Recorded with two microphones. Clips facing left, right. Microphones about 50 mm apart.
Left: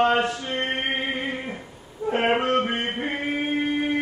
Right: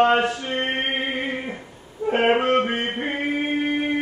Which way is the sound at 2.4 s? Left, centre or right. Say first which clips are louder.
Right 2 dB; right.